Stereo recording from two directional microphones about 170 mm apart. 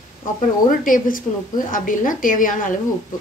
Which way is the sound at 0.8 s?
55° left (ahead or behind).